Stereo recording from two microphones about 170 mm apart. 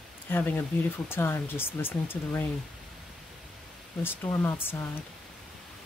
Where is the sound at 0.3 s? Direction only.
10° left (ahead or behind).